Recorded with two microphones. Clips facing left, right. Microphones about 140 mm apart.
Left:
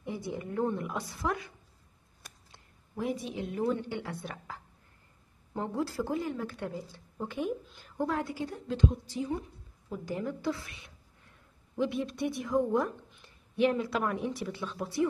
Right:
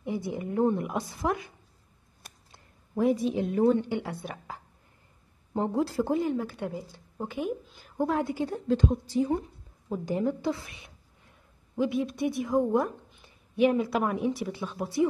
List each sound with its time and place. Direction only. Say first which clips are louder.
0.0 s a woman's voice: right 5 dB; 15° right (ahead or behind)
3.0 s a woman's voice: right 9 dB; 40° right (ahead or behind)
3.9 s a woman's voice: right 5 dB; 15° right (ahead or behind)
8.0 s a woman's voice: right 5 dB; 20° right (ahead or behind)
8.5 s a woman's voice: right 4 dB; 40° right (ahead or behind)
10.0 s a woman's voice: right 5 dB; 20° right (ahead or behind)
11.8 s a woman's voice: right 4 dB; 10° right (ahead or behind)